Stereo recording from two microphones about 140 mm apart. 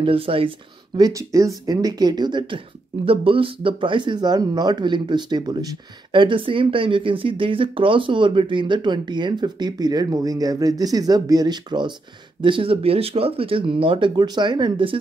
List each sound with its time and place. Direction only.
0.0 s speech: 40° right (ahead or behind)
0.9 s speech: 25° right (ahead or behind)